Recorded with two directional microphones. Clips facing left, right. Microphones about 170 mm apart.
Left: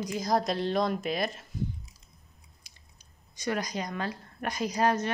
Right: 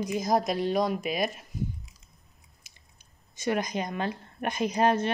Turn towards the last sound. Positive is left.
turn(degrees=-25)  # may be behind; listen again after turning